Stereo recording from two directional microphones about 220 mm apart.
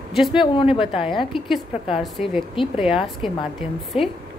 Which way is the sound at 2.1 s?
Centre (ahead or behind).